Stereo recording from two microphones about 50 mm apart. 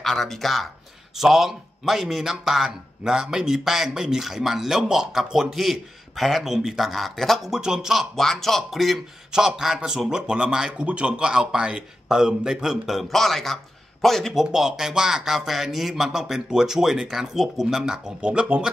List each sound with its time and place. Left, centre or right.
0.0 s a man's voice: centre
7.4 s a man's voice: centre
8.2 s speech: centre
9.3 s a man's voice: centre
14.3 s a man's voice: centre